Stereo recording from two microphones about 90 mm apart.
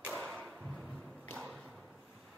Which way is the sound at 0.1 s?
Centre (ahead or behind).